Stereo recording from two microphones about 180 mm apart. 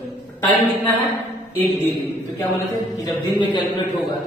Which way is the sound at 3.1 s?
25° left (ahead or behind).